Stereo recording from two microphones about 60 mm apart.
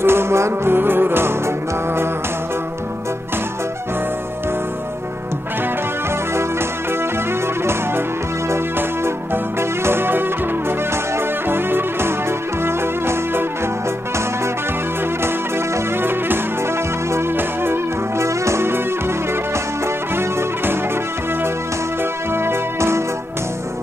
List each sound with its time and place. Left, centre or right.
0.0 s music: right
8.5 s music: right
15.2 s music: right
17.4 s music: right
20.2 s music: right
22.3 s music: right